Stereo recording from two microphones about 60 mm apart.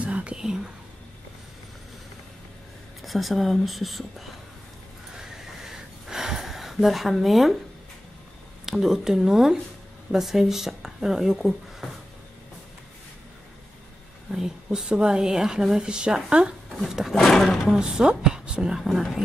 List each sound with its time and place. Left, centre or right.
0.0 s speech: right
3.0 s a woman's voice: centre
5.1 s a sound: centre
8.6 s a woman's voice: centre
14.3 s a woman's voice: centre
16.9 s a woman's voice: centre
17.2 s speech: centre
17.7 s a woman's voice: centre
18.8 s a woman's voice: centre